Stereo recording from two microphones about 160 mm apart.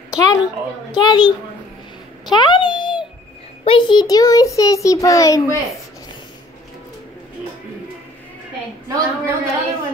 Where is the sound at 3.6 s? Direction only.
30° left (ahead or behind).